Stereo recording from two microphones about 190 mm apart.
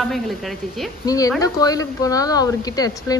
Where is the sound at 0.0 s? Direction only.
Centre (ahead or behind).